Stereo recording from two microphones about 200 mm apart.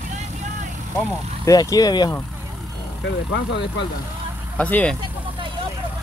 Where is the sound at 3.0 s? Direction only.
60° left (ahead or behind).